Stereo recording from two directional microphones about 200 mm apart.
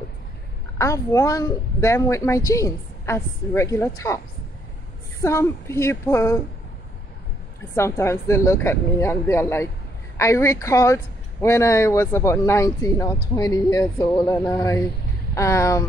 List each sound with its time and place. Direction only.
0.7 s speech: 15° left (ahead or behind)
5.2 s speech: 15° left (ahead or behind)
7.7 s speech: 15° left (ahead or behind)